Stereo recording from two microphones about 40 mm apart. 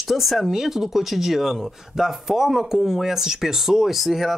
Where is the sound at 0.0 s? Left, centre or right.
Centre.